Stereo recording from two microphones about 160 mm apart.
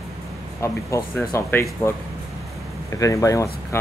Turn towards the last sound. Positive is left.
turn(degrees=15)  # may be behind; listen again after turning